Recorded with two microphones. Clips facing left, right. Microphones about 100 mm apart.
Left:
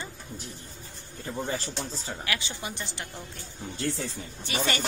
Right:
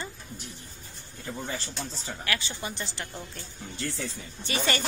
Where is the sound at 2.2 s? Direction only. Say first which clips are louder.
Right 3 dB; 15° left (ahead or behind).